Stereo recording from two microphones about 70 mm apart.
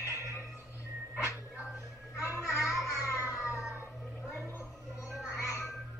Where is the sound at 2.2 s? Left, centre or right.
Left.